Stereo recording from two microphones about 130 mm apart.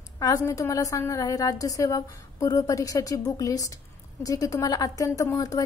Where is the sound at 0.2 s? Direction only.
25° left (ahead or behind).